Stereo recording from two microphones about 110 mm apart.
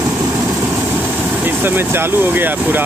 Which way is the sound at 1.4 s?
20° right (ahead or behind).